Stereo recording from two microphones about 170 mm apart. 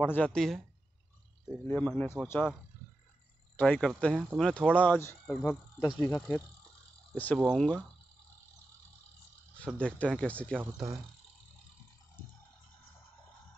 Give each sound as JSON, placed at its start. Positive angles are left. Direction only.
{"t": 0.0, "sound": "a man's voice", "side_deg": 10}
{"t": 1.7, "sound": "speech", "side_deg": 10}
{"t": 3.5, "sound": "a man's voice", "side_deg": 10}
{"t": 9.8, "sound": "speech", "side_deg": 5}
{"t": 10.6, "sound": "speech", "side_deg": -20}